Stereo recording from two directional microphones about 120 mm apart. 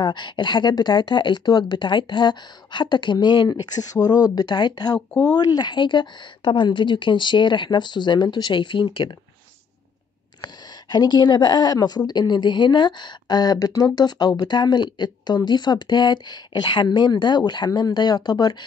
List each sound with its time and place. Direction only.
0.0 s speech: 40° left (ahead or behind)
10.4 s a woman's voice: 35° left (ahead or behind)